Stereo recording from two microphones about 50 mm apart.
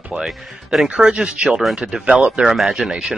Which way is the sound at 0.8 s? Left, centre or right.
Centre.